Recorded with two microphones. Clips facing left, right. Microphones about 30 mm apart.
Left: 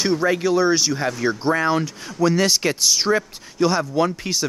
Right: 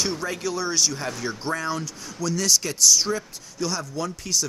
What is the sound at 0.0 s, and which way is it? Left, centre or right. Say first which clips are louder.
Speech: left 8 dB; centre.